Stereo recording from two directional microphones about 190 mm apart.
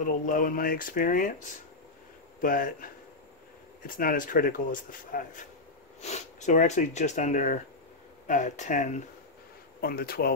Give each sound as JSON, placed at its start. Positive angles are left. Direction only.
{"t": 0.0, "sound": "speech", "side_deg": 45}
{"t": 9.8, "sound": "speech", "side_deg": 50}